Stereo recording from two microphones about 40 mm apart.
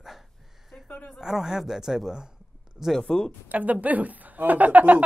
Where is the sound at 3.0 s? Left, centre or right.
Centre.